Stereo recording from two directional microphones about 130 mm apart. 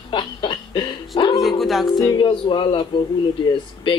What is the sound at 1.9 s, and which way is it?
Speech, 35° left (ahead or behind).